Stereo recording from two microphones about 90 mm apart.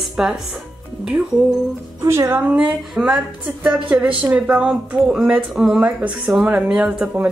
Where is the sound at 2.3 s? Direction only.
15° right (ahead or behind).